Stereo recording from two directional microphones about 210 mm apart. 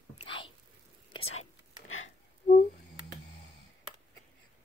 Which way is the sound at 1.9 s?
70° left (ahead or behind).